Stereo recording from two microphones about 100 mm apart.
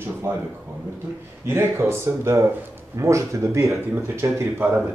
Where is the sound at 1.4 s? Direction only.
25° right (ahead or behind).